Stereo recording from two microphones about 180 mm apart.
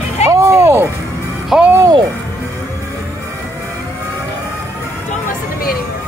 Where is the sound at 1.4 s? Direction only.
5° right (ahead or behind).